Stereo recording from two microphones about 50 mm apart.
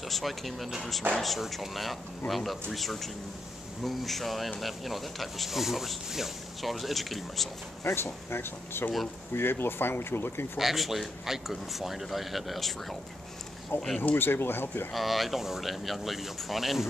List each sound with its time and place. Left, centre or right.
0.1 s speech: centre
7.8 s speech: left
10.6 s speech: centre
13.7 s speech: left
14.9 s speech: centre